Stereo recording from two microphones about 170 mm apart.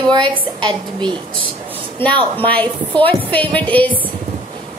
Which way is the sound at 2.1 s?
30° right (ahead or behind).